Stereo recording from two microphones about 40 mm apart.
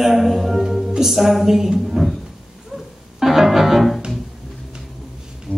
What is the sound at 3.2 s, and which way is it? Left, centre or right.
Music, centre.